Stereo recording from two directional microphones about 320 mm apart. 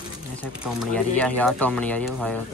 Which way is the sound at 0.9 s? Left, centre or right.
Centre.